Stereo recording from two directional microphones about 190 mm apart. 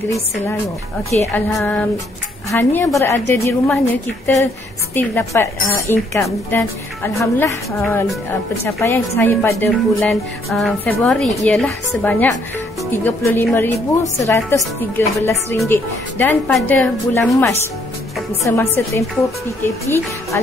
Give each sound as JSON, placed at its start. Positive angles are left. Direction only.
{"t": 0.1, "sound": "speech", "side_deg": 15}